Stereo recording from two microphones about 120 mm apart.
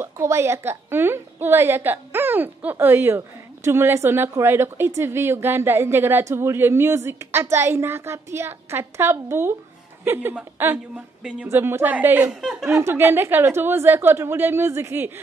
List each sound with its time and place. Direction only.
0.0 s a woman's voice: 20° right (ahead or behind)
12.4 s speech: 5° right (ahead or behind)
12.8 s a woman's voice: 20° right (ahead or behind)